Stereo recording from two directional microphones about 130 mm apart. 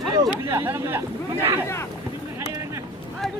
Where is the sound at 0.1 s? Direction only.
25° right (ahead or behind).